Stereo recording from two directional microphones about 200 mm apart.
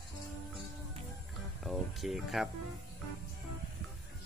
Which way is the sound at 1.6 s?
Centre (ahead or behind).